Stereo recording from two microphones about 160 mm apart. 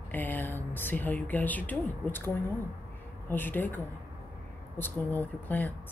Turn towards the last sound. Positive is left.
turn(degrees=10)  # may be behind; listen again after turning